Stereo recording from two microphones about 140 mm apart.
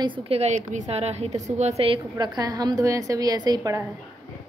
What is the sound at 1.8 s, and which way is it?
A woman's voice, 35° right (ahead or behind).